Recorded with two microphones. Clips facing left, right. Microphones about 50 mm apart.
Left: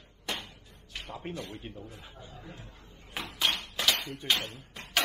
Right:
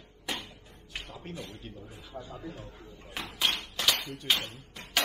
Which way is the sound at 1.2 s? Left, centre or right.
Left.